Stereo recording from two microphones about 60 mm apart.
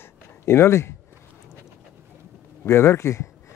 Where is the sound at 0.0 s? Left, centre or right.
Left.